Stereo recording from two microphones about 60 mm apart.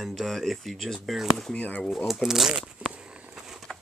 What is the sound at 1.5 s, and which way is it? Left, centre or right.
Speech, left.